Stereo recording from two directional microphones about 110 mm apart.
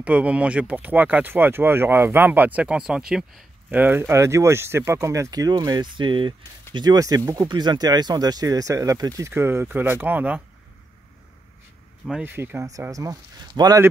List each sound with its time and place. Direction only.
0.0 s speech: 10° right (ahead or behind)
3.7 s speech: 20° right (ahead or behind); by 9.3 s 35° right (ahead or behind)
9.3 s speech: 20° right (ahead or behind)
12.1 s speech: 15° right (ahead or behind)
12.9 s speech: 35° right (ahead or behind)